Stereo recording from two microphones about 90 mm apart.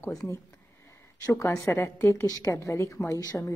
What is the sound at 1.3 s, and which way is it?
A woman's voice, 35° left (ahead or behind).